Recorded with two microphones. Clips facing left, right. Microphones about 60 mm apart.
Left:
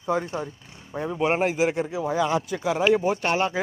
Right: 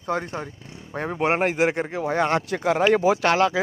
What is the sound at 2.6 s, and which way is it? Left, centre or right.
Speech, right.